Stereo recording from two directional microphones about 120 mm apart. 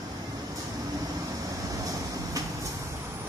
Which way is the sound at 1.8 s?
30° right (ahead or behind).